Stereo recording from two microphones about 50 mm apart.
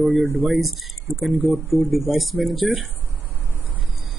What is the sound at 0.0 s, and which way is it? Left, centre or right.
Speech, right.